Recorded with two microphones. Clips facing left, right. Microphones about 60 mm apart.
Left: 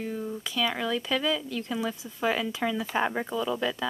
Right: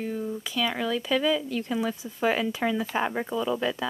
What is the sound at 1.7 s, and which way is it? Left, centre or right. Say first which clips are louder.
Speech: right 2 dB; centre.